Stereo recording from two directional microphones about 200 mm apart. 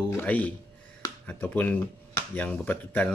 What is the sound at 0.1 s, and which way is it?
Speech, 10° left (ahead or behind).